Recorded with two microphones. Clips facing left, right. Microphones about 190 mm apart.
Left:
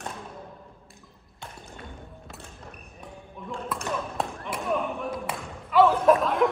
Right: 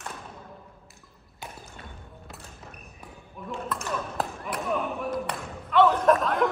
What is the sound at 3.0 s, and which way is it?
Basketball bounce, centre (ahead or behind).